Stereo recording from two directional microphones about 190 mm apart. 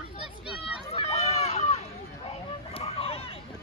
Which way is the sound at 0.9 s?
35° left (ahead or behind).